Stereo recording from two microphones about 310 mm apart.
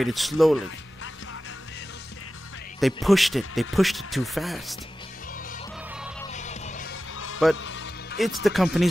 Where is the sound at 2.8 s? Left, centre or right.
Centre.